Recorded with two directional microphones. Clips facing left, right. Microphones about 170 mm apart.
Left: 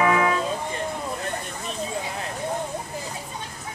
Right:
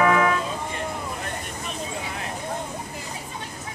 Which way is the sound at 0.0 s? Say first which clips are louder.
Right 1 dB; 15° left (ahead or behind).